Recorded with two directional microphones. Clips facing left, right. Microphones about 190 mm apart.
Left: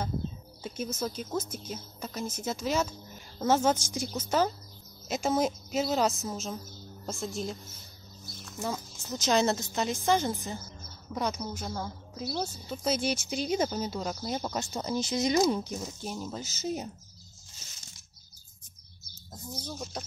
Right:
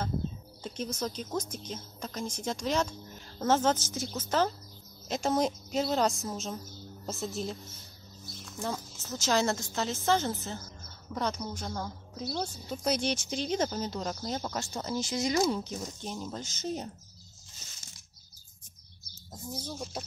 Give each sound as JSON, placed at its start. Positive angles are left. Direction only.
{"t": 0.6, "sound": "a woman's voice", "side_deg": 5}
{"t": 8.5, "sound": "a sound", "side_deg": 5}
{"t": 9.0, "sound": "speech", "side_deg": 15}
{"t": 15.8, "sound": "speech", "side_deg": 5}
{"t": 19.6, "sound": "speech", "side_deg": -5}